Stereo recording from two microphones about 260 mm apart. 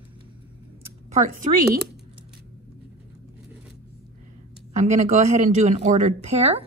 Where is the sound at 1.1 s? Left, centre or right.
Right.